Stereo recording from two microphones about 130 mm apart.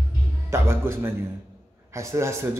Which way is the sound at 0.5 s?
20° right (ahead or behind).